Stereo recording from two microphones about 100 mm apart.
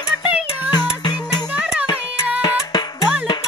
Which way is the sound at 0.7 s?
45° left (ahead or behind).